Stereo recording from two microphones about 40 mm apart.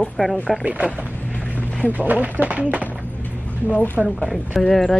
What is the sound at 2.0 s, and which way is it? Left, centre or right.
Speech, right.